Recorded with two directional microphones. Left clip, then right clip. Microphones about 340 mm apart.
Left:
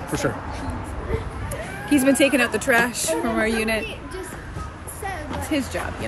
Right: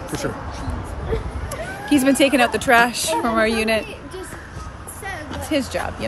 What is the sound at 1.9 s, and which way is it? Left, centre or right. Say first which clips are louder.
A woman's voice: right 2 dB; centre.